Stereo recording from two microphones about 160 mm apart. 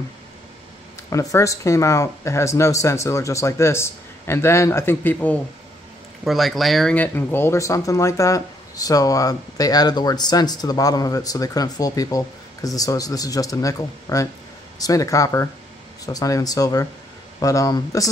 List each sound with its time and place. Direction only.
1.3 s speech: 20° left (ahead or behind)
6.2 s speech: centre (ahead or behind); by 18.1 s 25° left (ahead or behind)